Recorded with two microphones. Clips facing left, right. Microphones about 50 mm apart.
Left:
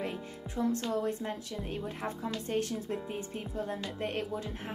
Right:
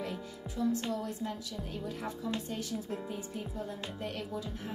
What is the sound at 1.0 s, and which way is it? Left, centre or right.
A woman's voice, left.